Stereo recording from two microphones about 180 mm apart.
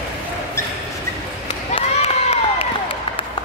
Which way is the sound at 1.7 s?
30° left (ahead or behind).